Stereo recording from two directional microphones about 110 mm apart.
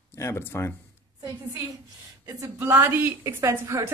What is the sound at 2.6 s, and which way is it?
A woman's voice, 25° right (ahead or behind).